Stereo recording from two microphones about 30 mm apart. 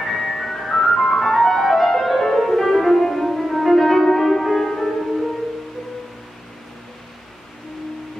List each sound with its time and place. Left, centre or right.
0.0 s ice cream truck: centre
2.9 s music: centre
3.3 s music: centre